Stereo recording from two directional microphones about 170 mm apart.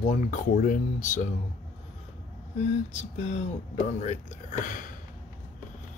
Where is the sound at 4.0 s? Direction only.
45° left (ahead or behind).